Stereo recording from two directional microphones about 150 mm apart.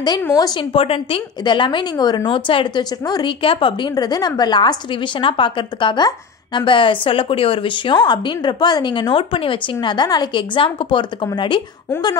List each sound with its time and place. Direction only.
0.2 s a woman's voice: 25° left (ahead or behind)